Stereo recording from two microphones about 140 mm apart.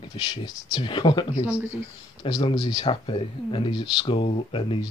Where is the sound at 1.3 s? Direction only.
15° right (ahead or behind).